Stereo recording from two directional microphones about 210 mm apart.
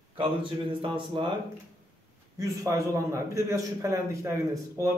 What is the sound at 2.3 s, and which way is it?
A man's voice, 15° right (ahead or behind).